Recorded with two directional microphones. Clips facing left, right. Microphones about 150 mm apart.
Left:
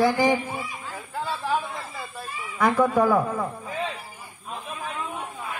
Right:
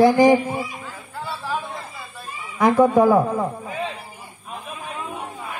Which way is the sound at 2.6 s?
20° right (ahead or behind).